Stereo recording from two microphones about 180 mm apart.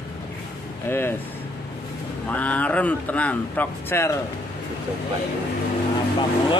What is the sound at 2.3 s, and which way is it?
Speech, 10° left (ahead or behind).